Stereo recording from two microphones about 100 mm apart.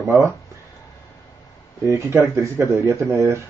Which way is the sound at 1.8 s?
30° right (ahead or behind).